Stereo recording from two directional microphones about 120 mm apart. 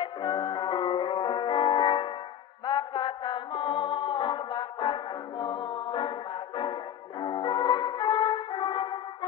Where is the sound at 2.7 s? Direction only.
40° left (ahead or behind).